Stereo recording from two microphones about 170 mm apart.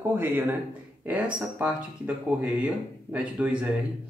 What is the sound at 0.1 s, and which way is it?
Speech, 10° right (ahead or behind).